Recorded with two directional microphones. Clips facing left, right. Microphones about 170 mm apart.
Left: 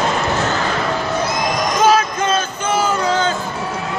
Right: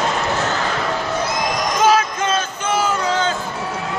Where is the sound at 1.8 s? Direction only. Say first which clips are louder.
Left 1 dB; 40° left (ahead or behind).